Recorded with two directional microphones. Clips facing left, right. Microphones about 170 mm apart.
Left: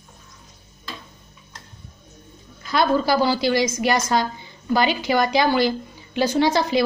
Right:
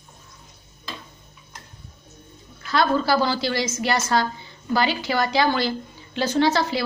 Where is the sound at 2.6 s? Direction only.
15° left (ahead or behind).